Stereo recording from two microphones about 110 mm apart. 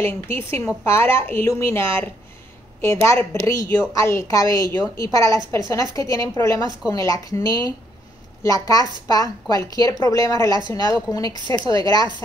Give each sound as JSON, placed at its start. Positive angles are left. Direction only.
{"t": 0.0, "sound": "a woman's voice", "side_deg": 20}